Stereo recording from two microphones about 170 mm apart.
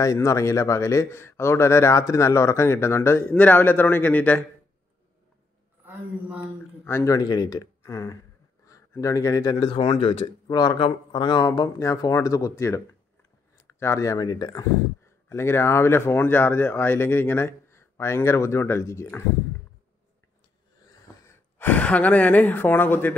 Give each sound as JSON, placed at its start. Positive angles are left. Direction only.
{"t": 0.0, "sound": "speech", "side_deg": 20}
{"t": 6.8, "sound": "speech", "side_deg": 15}
{"t": 10.4, "sound": "speech", "side_deg": 25}
{"t": 20.8, "sound": "a sound", "side_deg": 15}